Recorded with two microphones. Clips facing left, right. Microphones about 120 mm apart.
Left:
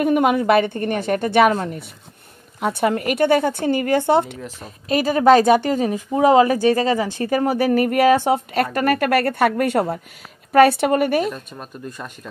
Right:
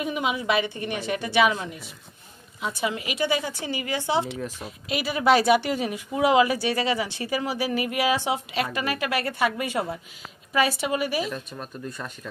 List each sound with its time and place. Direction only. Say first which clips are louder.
0.0 s a woman's voice: left 10 dB; 55° left (ahead or behind)